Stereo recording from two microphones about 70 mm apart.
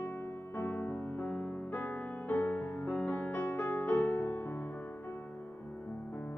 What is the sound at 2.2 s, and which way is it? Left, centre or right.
Music, left.